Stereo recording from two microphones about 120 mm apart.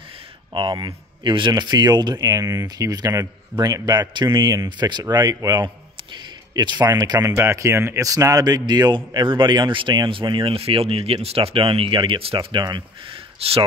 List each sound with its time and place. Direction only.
0.5 s speech: 35° right (ahead or behind)